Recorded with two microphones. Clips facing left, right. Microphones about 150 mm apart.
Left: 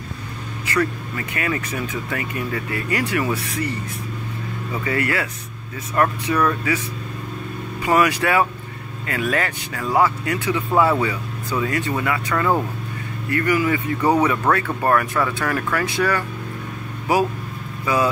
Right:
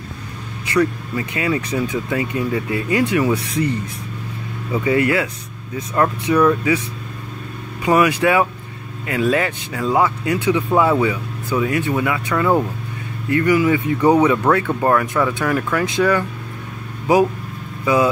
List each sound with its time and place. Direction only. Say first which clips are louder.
0.7 s speech: right 5 dB; 15° right (ahead or behind)
4.7 s speech: right 6 dB; 20° right (ahead or behind)
7.8 s speech: right 3 dB; 15° right (ahead or behind)
13.3 s speech: right 4 dB; 20° right (ahead or behind)